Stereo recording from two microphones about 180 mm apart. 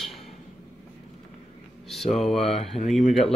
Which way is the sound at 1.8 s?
Centre (ahead or behind).